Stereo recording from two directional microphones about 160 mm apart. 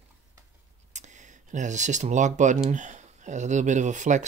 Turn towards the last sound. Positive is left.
turn(degrees=-50)  # may be behind; listen again after turning